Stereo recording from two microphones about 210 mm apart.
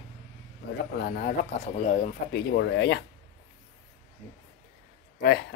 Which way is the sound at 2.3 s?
55° left (ahead or behind).